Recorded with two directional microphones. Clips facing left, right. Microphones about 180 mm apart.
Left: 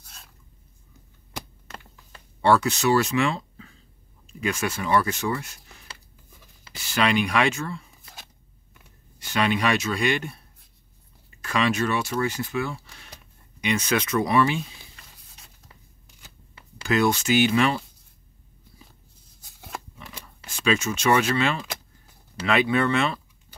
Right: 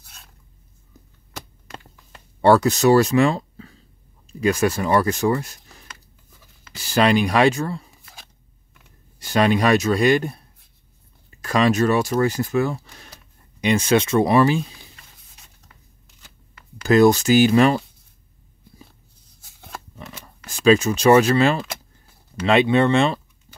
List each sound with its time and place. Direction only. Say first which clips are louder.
0.0 s a sound: even; centre (ahead or behind)
2.4 s speech: right 6 dB; 40° right (ahead or behind)
9.2 s speech: right 6 dB; 40° right (ahead or behind)
16.8 s speech: right 8 dB; 40° right (ahead or behind)
20.4 s speech: right 9 dB; 40° right (ahead or behind)
22.5 s speech: right 6 dB; 25° right (ahead or behind)